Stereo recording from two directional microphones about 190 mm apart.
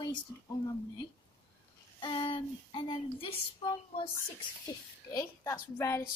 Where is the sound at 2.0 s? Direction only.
25° left (ahead or behind).